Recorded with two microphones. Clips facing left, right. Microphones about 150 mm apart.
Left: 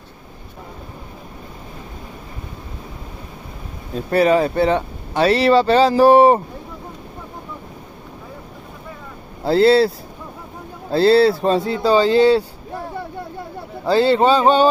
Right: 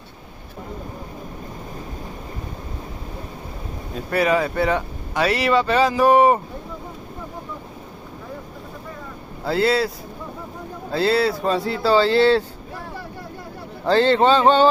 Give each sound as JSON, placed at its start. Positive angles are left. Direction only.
{"t": 4.1, "sound": "speech", "side_deg": 30}
{"t": 9.4, "sound": "speech", "side_deg": 30}
{"t": 13.8, "sound": "a sound", "side_deg": 10}